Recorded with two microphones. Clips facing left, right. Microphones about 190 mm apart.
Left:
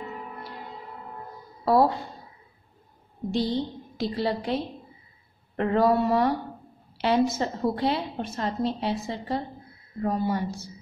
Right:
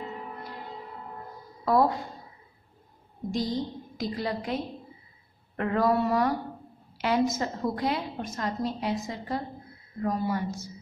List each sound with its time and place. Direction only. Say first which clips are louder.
1.6 s speech: left 2 dB; 30° left (ahead or behind)
3.3 s a woman's voice: left 3 dB; 30° left (ahead or behind)
5.6 s a woman's voice: left 3 dB; 30° left (ahead or behind)